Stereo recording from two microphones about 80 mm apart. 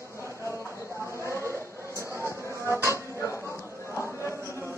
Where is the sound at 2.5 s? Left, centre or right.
Left.